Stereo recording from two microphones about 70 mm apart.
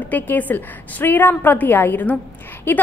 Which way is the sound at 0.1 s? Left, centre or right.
Left.